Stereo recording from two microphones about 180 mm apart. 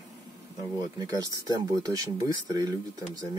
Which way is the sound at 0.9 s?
20° right (ahead or behind).